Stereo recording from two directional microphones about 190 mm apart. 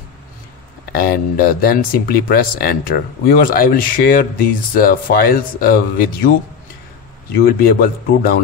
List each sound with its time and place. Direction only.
0.9 s speech: 50° left (ahead or behind)
7.4 s speech: 50° left (ahead or behind)